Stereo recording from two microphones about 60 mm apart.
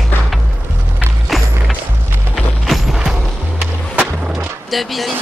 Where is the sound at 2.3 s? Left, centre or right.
Centre.